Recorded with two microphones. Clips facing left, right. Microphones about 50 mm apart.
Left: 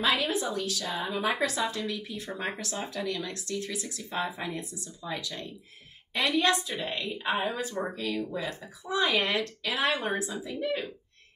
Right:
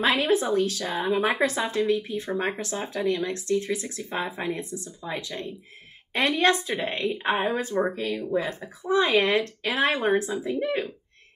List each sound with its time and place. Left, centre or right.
0.0 s speech: right